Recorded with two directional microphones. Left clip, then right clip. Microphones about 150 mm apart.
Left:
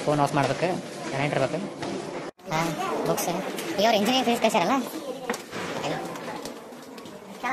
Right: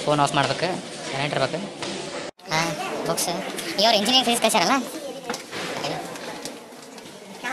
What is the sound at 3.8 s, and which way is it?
Speech, 15° left (ahead or behind).